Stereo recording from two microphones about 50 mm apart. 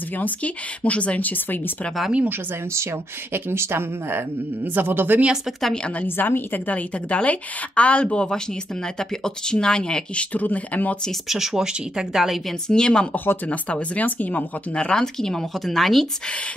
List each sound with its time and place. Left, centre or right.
0.2 s speech: left
3.3 s speech: right
4.7 s speech: right
6.0 s a woman's voice: left
7.1 s speech: left
10.3 s speech: left
11.2 s speech: centre
12.6 s speech: centre; by 14.9 s left
14.9 s speech: centre